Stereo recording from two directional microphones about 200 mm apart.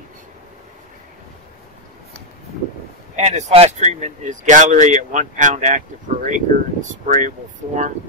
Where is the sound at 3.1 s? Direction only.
35° right (ahead or behind).